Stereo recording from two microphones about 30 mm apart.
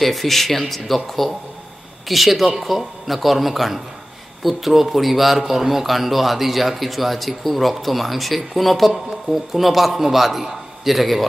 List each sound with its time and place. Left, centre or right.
0.0 s speech: centre